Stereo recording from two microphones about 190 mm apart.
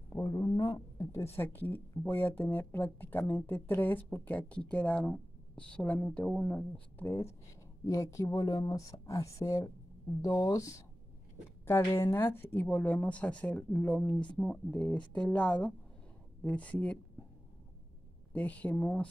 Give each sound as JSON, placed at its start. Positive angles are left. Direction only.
{"t": 0.1, "sound": "a woman's voice", "side_deg": 20}
{"t": 18.3, "sound": "a woman's voice", "side_deg": 10}